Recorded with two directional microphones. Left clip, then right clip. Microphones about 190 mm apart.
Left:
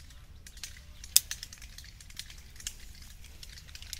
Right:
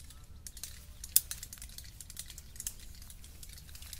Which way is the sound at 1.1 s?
65° right (ahead or behind).